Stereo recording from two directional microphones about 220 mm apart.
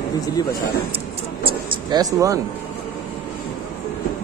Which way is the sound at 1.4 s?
20° right (ahead or behind).